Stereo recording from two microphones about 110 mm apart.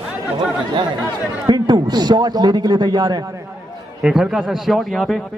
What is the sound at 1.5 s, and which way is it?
A man's voice, 40° right (ahead or behind).